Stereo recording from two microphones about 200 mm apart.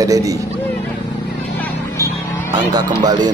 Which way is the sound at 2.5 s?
20° right (ahead or behind).